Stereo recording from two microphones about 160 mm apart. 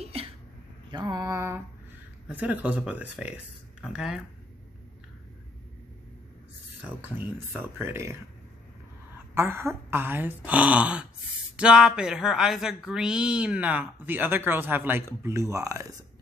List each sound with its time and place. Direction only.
0.0 s a sound: 40° right (ahead or behind)
0.9 s mantra: 25° right (ahead or behind)
2.2 s speech: 10° right (ahead or behind)
7.8 s speech: 15° right (ahead or behind)
9.3 s speech: 15° right (ahead or behind)